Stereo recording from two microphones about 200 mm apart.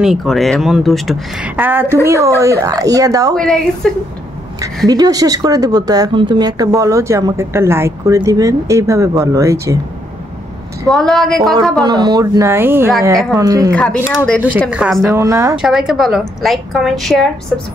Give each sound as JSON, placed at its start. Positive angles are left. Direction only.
{"t": 0.0, "sound": "a woman's voice", "side_deg": 0}
{"t": 3.3, "sound": "speech", "side_deg": 5}
{"t": 4.8, "sound": "a woman's voice", "side_deg": -20}
{"t": 10.9, "sound": "speech", "side_deg": 0}
{"t": 11.8, "sound": "a woman's voice", "side_deg": -20}
{"t": 13.7, "sound": "speech", "side_deg": 5}
{"t": 15.0, "sound": "a woman's voice", "side_deg": -15}
{"t": 15.6, "sound": "speech", "side_deg": 0}